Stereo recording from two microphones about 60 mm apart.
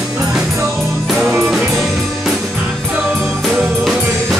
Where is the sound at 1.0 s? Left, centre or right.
Centre.